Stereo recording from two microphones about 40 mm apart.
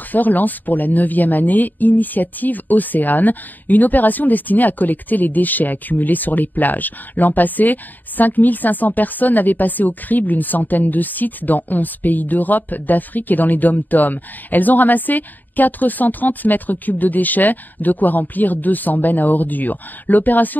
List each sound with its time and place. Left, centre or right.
0.1 s speech: left